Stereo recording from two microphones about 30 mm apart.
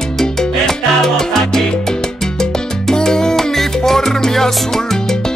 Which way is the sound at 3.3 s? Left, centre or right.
Centre.